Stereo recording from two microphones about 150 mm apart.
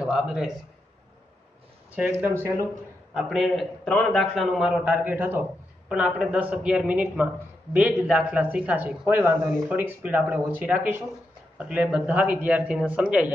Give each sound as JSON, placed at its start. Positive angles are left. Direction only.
{"t": 0.0, "sound": "a man's voice", "side_deg": -5}
{"t": 2.2, "sound": "speech", "side_deg": -15}
{"t": 3.2, "sound": "a man's voice", "side_deg": 0}